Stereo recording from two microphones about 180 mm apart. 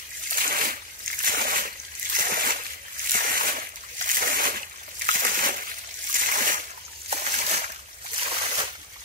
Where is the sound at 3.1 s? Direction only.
50° right (ahead or behind).